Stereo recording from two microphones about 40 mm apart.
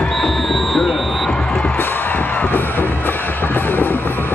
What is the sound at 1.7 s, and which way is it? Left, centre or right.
Music, left.